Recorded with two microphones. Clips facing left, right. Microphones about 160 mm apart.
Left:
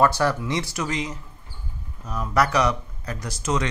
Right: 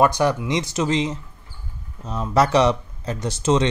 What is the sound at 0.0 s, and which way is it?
Speech, 15° right (ahead or behind).